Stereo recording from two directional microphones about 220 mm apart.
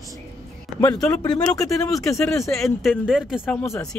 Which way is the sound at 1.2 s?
15° left (ahead or behind).